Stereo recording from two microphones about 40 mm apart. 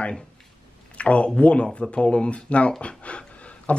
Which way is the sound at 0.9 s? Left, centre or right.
Left.